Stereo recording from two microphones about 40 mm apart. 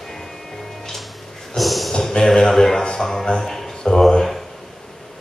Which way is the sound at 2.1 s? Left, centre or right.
Centre.